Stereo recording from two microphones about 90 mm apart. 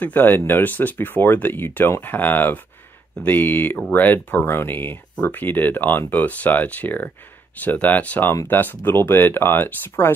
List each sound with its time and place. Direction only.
0.0 s speech: 20° left (ahead or behind)